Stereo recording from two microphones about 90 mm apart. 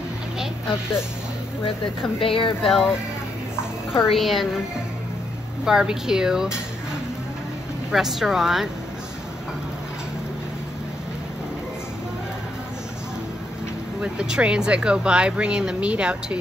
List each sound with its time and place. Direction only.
2.1 s speech: 75° left (ahead or behind)
2.6 s speech: centre (ahead or behind)
3.9 s speech: centre (ahead or behind)
5.7 s speech: 5° right (ahead or behind)
7.9 s speech: 5° right (ahead or behind)
14.0 s speech: 10° right (ahead or behind)